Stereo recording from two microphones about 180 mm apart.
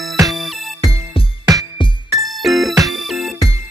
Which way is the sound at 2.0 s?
Centre (ahead or behind).